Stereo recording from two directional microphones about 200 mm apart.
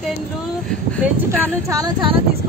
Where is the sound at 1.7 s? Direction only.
20° right (ahead or behind).